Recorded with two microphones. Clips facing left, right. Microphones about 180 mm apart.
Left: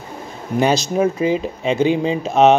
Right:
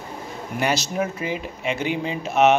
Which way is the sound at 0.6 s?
20° left (ahead or behind).